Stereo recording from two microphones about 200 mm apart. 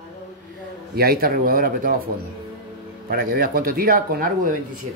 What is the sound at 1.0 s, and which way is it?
Speech, 50° right (ahead or behind).